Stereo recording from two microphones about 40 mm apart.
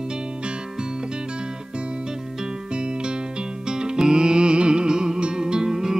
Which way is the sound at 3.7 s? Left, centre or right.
Centre.